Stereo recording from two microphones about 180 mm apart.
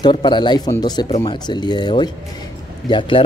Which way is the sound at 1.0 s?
35° left (ahead or behind).